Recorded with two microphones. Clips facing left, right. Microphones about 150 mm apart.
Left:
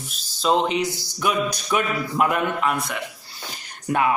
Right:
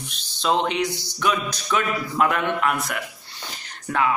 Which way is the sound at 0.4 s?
Centre (ahead or behind).